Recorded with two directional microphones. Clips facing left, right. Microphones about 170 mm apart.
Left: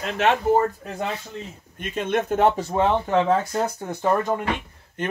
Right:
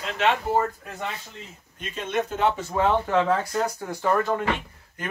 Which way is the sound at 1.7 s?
55° left (ahead or behind).